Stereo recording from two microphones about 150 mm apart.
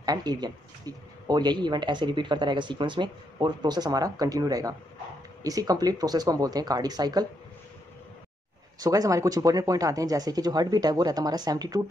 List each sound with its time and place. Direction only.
0.0 s speech: 25° right (ahead or behind)
8.7 s speech: 25° right (ahead or behind)